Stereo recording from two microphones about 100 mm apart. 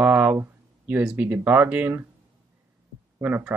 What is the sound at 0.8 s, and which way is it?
Speech, 15° right (ahead or behind).